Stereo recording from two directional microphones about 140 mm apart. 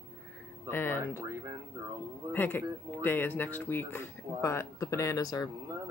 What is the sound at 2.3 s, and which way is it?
Speech, 15° left (ahead or behind).